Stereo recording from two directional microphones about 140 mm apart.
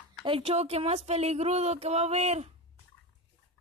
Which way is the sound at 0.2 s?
40° right (ahead or behind).